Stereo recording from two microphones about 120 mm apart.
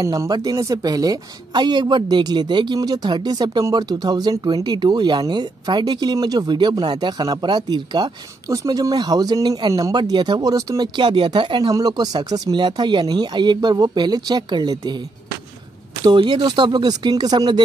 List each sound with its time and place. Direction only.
0.0 s speech: 30° right (ahead or behind)
11.0 s speech: 40° right (ahead or behind)
16.0 s speech: 40° right (ahead or behind)